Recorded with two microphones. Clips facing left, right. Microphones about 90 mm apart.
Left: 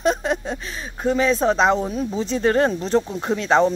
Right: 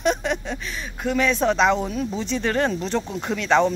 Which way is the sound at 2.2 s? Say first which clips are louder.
Left 5 dB; 35° left (ahead or behind).